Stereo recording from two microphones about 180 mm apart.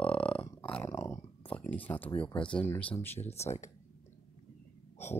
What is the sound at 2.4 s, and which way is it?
Speech, 5° left (ahead or behind).